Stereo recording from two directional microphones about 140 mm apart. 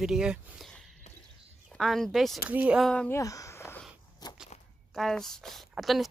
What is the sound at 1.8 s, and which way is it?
Speech, centre (ahead or behind).